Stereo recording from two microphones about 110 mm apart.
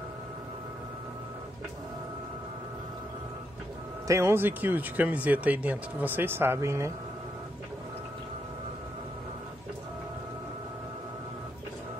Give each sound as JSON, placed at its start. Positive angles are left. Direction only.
{"t": 4.1, "sound": "speech", "side_deg": -25}